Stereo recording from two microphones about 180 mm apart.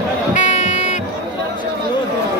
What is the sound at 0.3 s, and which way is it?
Music, 40° left (ahead or behind).